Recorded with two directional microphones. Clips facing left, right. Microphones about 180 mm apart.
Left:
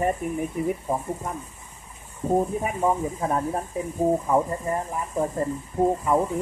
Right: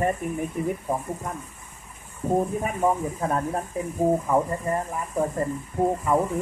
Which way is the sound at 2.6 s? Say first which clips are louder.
Even; 10° left (ahead or behind).